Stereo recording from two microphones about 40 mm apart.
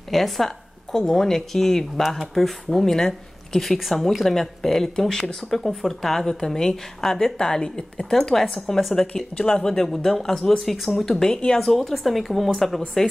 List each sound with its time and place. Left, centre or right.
0.1 s speech: centre
9.0 s speech: left
9.6 s speech: centre
11.1 s speech: centre